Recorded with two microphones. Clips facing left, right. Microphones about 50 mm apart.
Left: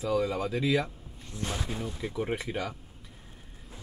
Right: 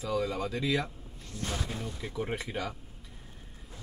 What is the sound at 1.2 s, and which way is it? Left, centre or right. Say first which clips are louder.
Speech: left 1 dB; centre.